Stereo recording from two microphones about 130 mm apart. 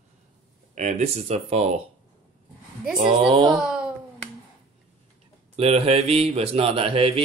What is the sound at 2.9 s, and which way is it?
Mantra, 45° right (ahead or behind).